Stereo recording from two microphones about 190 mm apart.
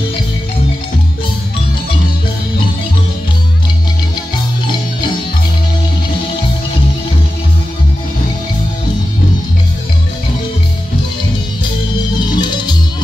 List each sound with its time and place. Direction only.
12.2 s music: 25° left (ahead or behind)